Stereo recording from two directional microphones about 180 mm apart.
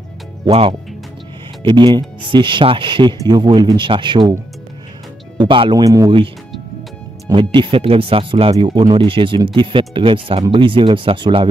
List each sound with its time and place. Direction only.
0.5 s speech: 35° right (ahead or behind)
5.4 s speech: 25° right (ahead or behind)